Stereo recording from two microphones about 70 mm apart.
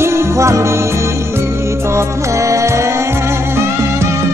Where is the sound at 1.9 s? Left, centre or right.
Right.